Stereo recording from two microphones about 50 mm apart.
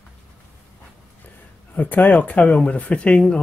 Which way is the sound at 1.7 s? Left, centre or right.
Left.